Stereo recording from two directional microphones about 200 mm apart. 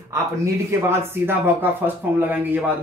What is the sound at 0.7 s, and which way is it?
Speech, 10° right (ahead or behind).